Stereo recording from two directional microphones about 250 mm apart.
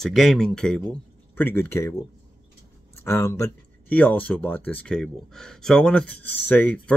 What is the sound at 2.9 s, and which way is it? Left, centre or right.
Speech, centre.